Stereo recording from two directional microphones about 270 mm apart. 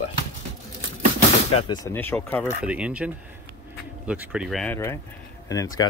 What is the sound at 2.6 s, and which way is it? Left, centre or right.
Speech, centre.